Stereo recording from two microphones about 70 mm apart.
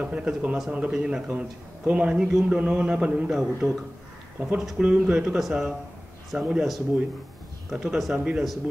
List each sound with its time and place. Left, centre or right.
0.0 s a man's voice: centre
4.8 s a man's voice: centre